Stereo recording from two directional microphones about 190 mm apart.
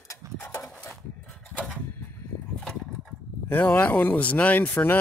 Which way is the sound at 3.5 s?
10° left (ahead or behind).